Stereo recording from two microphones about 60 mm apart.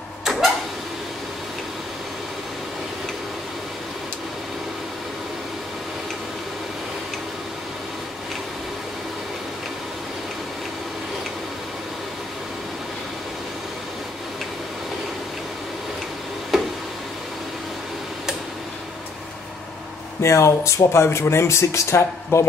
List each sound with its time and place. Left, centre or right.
0.2 s printer: centre
16.5 s a sound: centre
20.2 s speech: left